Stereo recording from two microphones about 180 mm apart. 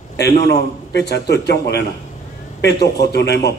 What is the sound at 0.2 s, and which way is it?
A man's voice, 70° left (ahead or behind).